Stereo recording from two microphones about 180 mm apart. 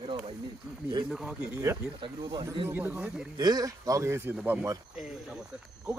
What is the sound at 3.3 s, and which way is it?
Speech, 20° right (ahead or behind).